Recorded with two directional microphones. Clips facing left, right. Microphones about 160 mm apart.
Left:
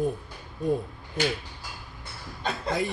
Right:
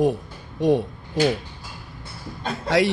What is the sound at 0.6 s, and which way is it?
Speech, 90° right.